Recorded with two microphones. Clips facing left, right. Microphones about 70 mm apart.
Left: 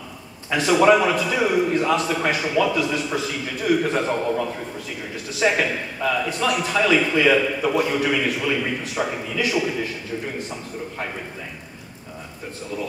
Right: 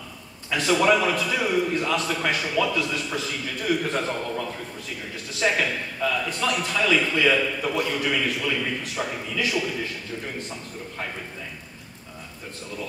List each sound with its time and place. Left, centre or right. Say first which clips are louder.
0.6 s a man's voice: left 4 dB; centre